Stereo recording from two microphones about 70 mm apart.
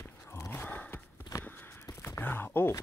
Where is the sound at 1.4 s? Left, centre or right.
Left.